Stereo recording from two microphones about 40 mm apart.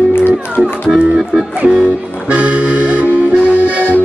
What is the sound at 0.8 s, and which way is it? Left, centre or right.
Music, right.